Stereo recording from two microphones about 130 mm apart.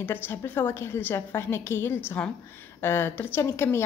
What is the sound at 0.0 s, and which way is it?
A woman's voice, 15° left (ahead or behind).